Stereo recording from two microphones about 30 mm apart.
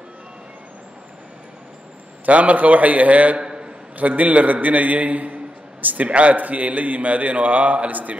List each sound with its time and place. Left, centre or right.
2.2 s a man's voice: right
3.3 s a sound: right
4.0 s a man's voice: right
4.6 s a man's voice: right
5.8 s a man's voice: right
6.0 s a man's voice: right
6.3 s a man's voice: right